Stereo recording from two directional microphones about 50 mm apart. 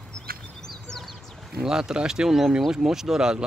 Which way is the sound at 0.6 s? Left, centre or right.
Centre.